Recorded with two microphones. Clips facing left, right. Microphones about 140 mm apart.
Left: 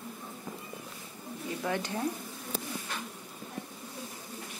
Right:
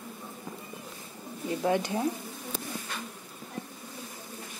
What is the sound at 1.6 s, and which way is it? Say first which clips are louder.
Speech: right 6 dB; 20° right (ahead or behind).